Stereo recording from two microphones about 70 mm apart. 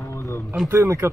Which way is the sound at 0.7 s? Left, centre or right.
Right.